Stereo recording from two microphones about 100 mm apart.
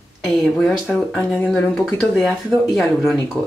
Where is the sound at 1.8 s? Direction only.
Centre (ahead or behind).